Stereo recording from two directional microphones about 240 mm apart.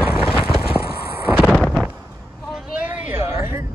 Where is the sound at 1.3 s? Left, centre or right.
Centre.